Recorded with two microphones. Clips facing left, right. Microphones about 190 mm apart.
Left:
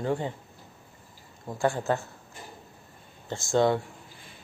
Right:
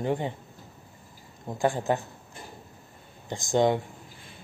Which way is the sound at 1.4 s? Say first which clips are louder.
Right 1 dB; 15° right (ahead or behind).